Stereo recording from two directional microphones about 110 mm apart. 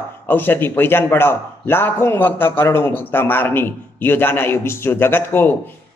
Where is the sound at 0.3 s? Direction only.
20° left (ahead or behind).